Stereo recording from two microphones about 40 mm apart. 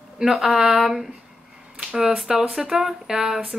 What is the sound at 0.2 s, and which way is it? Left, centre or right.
Speech, centre.